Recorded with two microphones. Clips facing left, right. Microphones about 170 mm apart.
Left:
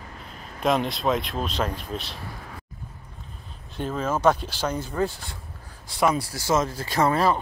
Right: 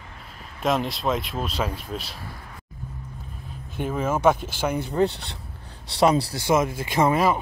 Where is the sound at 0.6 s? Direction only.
Centre (ahead or behind).